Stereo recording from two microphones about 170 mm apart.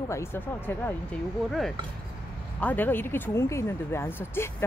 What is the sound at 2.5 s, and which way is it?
A woman's voice, 10° left (ahead or behind).